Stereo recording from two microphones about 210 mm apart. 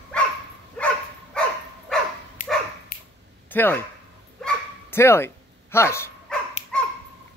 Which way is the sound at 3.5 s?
10° left (ahead or behind).